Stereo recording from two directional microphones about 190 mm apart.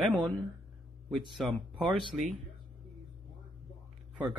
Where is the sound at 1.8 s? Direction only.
25° right (ahead or behind).